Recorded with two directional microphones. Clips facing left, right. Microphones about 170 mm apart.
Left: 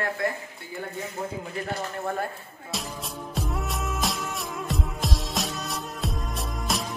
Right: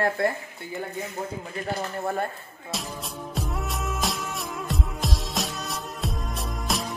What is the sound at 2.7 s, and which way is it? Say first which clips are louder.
Music: right 1 dB; centre (ahead or behind).